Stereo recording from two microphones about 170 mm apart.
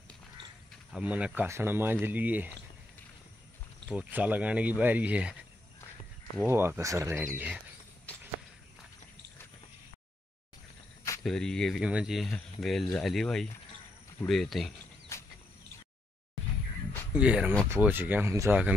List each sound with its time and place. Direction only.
0.9 s speech: 10° right (ahead or behind)
3.9 s speech: 10° right (ahead or behind)
6.4 s speech: 15° right (ahead or behind)
11.2 s speech: 5° left (ahead or behind)
15.1 s cricket: 15° left (ahead or behind)
17.1 s speech: 5° right (ahead or behind)